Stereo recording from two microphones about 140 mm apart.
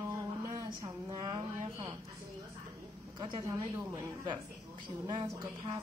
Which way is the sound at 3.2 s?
35° right (ahead or behind).